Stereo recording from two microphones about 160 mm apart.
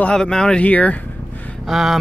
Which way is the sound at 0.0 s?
5° left (ahead or behind).